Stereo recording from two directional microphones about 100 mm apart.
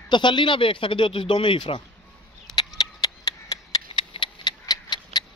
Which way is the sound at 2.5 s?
40° left (ahead or behind).